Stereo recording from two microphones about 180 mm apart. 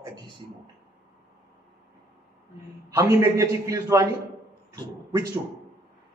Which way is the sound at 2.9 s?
15° right (ahead or behind).